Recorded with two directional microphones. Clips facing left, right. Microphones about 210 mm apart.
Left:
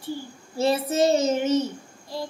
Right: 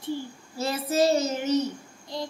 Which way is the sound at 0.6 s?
25° left (ahead or behind).